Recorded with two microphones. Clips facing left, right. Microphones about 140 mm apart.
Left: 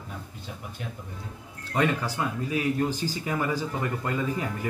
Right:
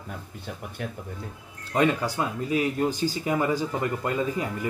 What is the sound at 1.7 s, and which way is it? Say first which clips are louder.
Speech: right 3 dB; 20° right (ahead or behind).